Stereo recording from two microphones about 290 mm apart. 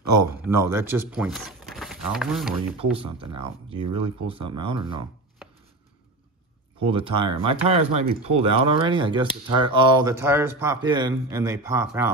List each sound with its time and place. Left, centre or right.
0.2 s speech: centre
3.3 s speech: centre
6.8 s speech: centre